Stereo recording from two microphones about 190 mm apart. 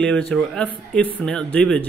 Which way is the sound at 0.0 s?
5° left (ahead or behind).